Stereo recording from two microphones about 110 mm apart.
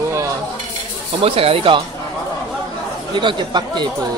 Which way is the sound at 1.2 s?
60° right (ahead or behind).